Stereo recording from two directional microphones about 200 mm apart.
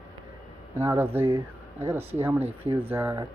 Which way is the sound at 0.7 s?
10° right (ahead or behind).